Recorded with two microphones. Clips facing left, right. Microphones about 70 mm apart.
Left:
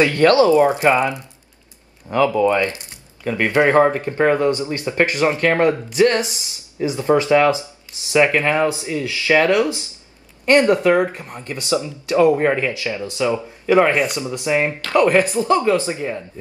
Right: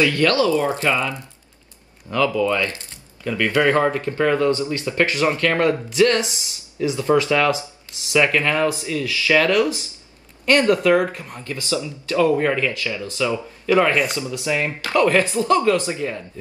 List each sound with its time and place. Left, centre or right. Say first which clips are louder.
0.0 s speech: left 4 dB; left